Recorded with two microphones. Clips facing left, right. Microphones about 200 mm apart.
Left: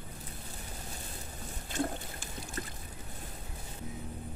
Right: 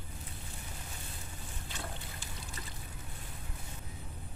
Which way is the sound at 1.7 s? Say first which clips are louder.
Left 12 dB; 50° left (ahead or behind).